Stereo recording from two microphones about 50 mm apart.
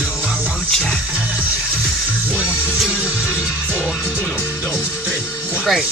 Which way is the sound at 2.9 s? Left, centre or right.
Right.